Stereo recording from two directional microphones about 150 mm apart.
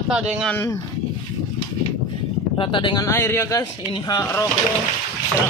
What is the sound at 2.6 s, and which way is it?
Speech, 35° left (ahead or behind).